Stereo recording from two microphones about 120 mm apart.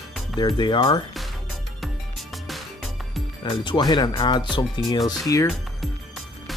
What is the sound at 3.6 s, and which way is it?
Speech, 40° left (ahead or behind).